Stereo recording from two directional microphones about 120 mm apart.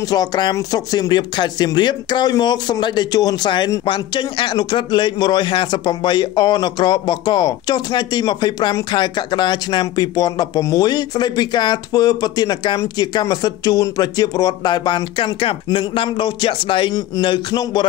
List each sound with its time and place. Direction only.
0.1 s speech: 35° left (ahead or behind)